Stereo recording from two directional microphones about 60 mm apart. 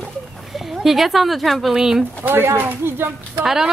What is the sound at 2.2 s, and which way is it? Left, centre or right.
Speech, right.